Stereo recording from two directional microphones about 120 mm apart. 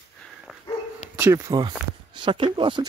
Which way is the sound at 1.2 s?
20° right (ahead or behind).